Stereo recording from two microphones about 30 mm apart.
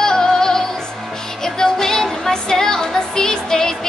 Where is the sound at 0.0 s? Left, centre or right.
Centre.